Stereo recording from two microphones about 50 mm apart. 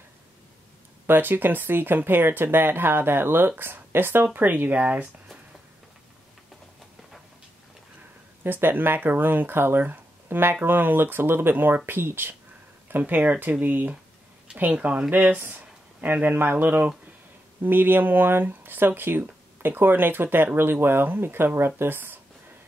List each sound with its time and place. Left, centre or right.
1.0 s speech: right
8.5 s speech: right
13.0 s speech: right